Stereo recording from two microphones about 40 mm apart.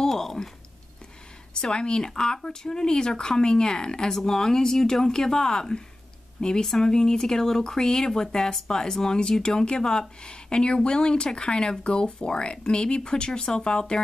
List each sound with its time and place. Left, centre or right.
0.1 s speech: centre
1.5 s speech: left